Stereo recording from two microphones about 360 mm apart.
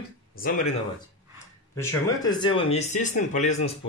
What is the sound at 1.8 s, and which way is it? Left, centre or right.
Speech, centre.